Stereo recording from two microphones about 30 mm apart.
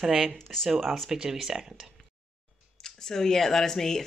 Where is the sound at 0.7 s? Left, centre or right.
Centre.